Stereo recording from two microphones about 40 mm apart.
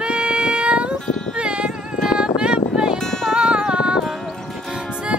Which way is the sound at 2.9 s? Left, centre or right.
Centre.